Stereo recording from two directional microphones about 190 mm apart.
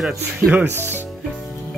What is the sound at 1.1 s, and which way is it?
Music, centre (ahead or behind).